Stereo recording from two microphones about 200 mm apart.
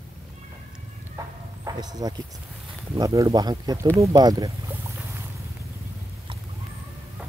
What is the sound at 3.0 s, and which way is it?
Speech, 15° right (ahead or behind).